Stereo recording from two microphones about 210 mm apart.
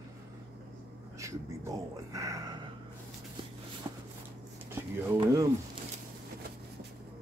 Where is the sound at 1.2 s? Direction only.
15° right (ahead or behind).